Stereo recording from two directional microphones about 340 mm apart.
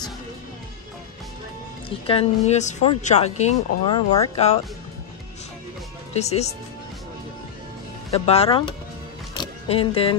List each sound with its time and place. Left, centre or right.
1.9 s speech: centre
6.1 s speech: centre
8.1 s speech: centre
9.4 s music: centre